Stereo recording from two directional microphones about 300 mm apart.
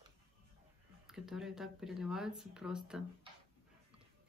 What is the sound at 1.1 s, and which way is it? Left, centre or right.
Speech, centre.